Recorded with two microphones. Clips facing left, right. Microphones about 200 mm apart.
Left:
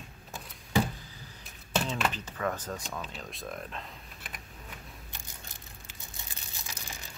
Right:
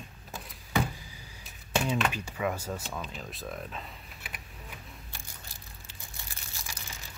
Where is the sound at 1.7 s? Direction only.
10° right (ahead or behind).